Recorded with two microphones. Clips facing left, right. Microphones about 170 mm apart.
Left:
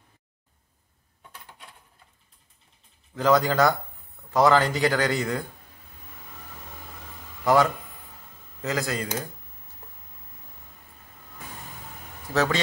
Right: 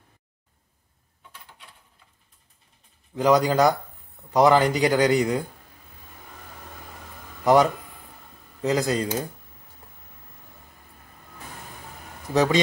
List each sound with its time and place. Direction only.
3.2 s speech: 15° right (ahead or behind)
7.4 s a man's voice: 20° right (ahead or behind)
12.3 s speech: 20° right (ahead or behind)